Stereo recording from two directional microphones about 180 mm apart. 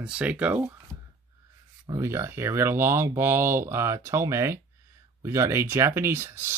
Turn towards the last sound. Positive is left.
turn(degrees=-10)  # may be behind; listen again after turning